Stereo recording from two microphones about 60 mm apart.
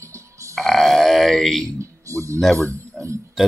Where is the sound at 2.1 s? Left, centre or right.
Right.